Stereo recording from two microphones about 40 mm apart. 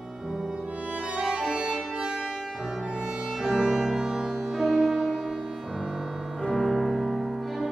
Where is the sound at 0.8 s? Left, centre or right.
Right.